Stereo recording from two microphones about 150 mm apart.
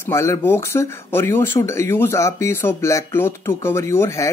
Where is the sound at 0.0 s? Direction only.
20° left (ahead or behind).